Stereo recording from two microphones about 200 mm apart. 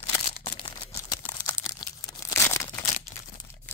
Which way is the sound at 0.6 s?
20° left (ahead or behind).